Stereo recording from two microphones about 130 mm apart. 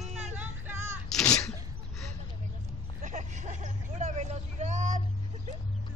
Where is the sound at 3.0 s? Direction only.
65° right (ahead or behind).